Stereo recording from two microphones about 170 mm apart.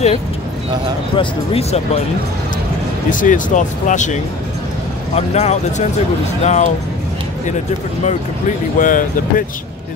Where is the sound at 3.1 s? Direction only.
50° left (ahead or behind).